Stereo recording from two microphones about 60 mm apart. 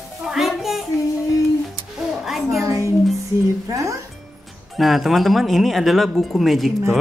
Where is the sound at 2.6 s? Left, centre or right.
Right.